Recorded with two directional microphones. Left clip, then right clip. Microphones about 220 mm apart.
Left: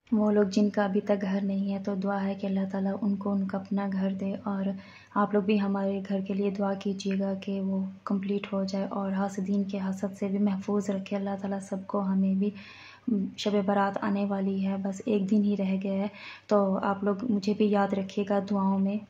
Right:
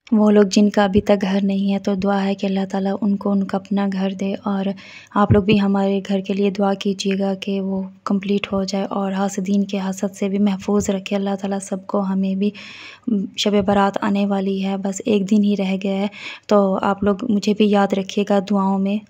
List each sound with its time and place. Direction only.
0.1 s speech: 45° right (ahead or behind)